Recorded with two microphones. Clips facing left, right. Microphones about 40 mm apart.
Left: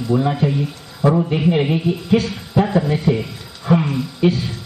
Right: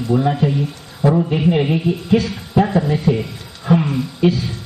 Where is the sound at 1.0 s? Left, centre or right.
Centre.